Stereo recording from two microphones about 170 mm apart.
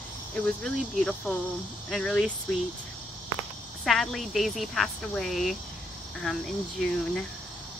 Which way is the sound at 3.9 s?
Centre (ahead or behind).